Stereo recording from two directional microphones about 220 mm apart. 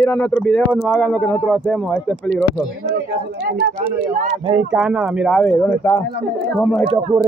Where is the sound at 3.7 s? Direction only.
25° right (ahead or behind).